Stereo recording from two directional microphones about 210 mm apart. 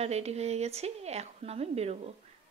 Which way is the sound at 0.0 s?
30° right (ahead or behind).